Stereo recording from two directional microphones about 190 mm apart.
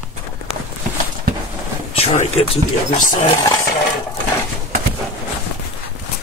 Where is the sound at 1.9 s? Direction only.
30° left (ahead or behind).